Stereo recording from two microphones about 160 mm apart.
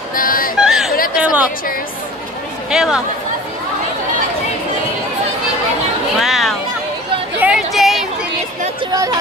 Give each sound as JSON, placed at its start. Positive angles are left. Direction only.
{"t": 0.1, "sound": "speech", "side_deg": 60}
{"t": 0.6, "sound": "chatter", "side_deg": -5}
{"t": 2.7, "sound": "speech", "side_deg": -5}
{"t": 6.1, "sound": "a sound", "side_deg": 0}
{"t": 8.9, "sound": "speech", "side_deg": -20}